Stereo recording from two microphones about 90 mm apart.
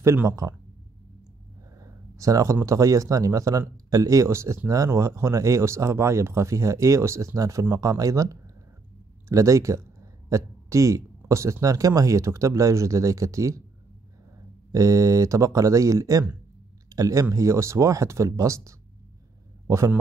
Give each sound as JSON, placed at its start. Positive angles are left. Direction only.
{"t": 0.3, "sound": "speech", "side_deg": -35}
{"t": 1.8, "sound": "speech", "side_deg": -40}
{"t": 14.7, "sound": "speech", "side_deg": -40}